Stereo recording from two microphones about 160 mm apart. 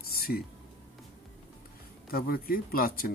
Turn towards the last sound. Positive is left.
turn(degrees=65)  # may be behind; listen again after turning